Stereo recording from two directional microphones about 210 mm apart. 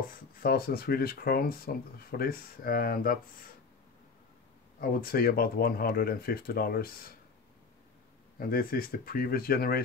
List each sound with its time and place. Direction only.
0.4 s speech: 45° left (ahead or behind)
4.7 s speech: 45° left (ahead or behind)
8.4 s speech: 45° left (ahead or behind)